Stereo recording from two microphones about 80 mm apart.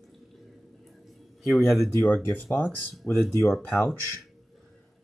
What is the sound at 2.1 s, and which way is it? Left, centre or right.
Speech, left.